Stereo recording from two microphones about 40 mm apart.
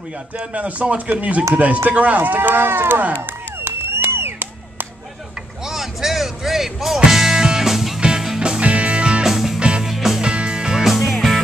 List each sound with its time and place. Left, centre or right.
0.6 s speech: right
3.2 s music: right
5.7 s a sound: centre
7.0 s music: centre
8.4 s music: right
9.2 s music: centre
9.6 s music: right
9.8 s music: centre
10.2 s music: right
10.9 s music: centre